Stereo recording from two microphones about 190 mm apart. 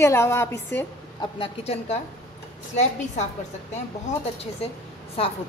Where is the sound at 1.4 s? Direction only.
30° left (ahead or behind).